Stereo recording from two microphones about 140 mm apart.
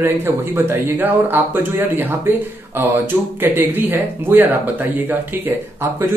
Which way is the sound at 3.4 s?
15° right (ahead or behind).